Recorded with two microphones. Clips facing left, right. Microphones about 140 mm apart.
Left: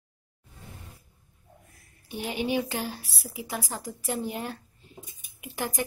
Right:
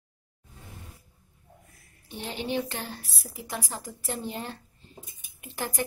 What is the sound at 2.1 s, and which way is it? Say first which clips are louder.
A woman's voice: left 3 dB; 10° left (ahead or behind).